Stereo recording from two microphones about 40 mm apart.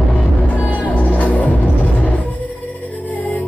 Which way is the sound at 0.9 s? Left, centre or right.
Left.